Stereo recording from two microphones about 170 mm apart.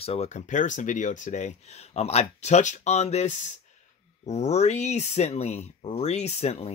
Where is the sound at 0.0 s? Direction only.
40° left (ahead or behind).